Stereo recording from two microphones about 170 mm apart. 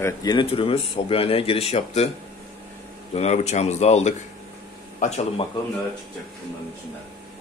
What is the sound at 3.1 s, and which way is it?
Speech, 40° left (ahead or behind).